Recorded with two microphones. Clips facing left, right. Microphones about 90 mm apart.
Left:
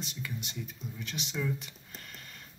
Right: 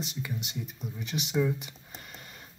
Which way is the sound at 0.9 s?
15° right (ahead or behind).